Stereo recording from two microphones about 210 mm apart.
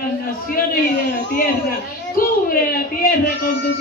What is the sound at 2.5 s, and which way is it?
A woman's voice, 45° left (ahead or behind).